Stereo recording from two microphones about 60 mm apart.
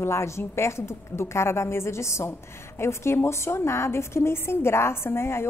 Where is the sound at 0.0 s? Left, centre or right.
Left.